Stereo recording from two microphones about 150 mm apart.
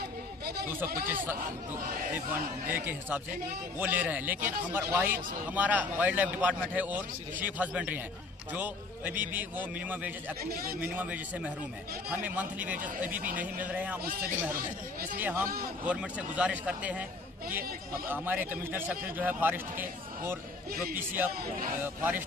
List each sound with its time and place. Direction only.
2.7 s a man's voice: 15° right (ahead or behind)
10.4 s a man's voice: 85° right
10.8 s a man's voice: 10° right (ahead or behind)
15.1 s a man's voice: 10° right (ahead or behind)
21.3 s speech: 90° right
21.8 s a man's voice: 10° right (ahead or behind)